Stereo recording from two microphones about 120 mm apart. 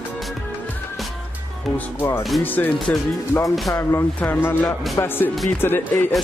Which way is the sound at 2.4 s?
15° left (ahead or behind).